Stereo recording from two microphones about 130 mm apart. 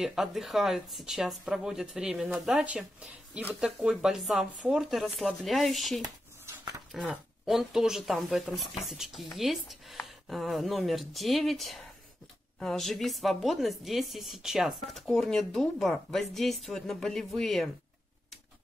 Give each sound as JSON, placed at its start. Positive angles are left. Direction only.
{"t": 0.0, "sound": "a woman's voice", "side_deg": -5}
{"t": 6.0, "sound": "a sound", "side_deg": -30}
{"t": 6.9, "sound": "a woman's voice", "side_deg": 0}